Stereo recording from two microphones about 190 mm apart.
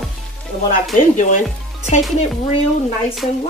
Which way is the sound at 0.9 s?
40° left (ahead or behind).